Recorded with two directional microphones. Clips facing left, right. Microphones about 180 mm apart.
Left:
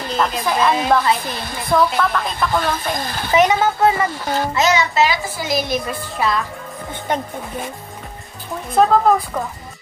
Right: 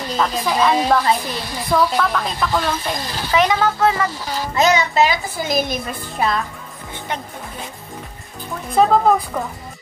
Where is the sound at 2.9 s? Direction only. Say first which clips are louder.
Left 1 dB; 50° left (ahead or behind).